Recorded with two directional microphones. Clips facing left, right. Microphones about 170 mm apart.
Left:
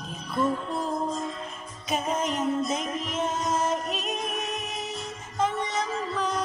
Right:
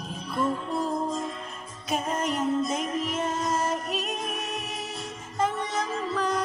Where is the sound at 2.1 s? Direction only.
10° right (ahead or behind).